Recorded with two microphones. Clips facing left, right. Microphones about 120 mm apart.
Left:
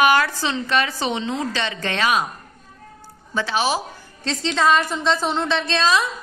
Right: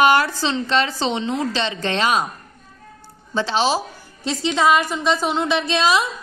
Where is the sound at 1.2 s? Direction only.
20° left (ahead or behind).